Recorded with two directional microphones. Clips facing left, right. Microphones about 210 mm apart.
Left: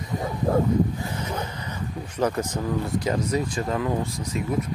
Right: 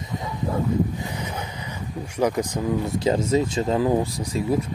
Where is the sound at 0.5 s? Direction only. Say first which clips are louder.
Left 5 dB; 50° left (ahead or behind).